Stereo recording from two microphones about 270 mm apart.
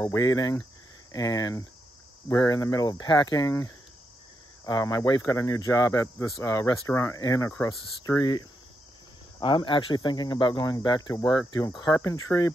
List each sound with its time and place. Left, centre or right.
0.0 s speech: centre